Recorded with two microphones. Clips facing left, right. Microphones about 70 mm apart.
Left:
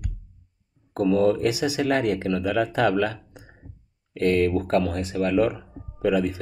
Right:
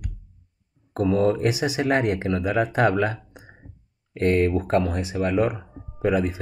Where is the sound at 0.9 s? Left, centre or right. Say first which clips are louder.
Left 1 dB; right.